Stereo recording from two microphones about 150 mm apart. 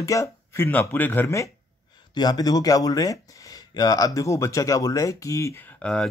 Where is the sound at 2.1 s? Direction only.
25° left (ahead or behind).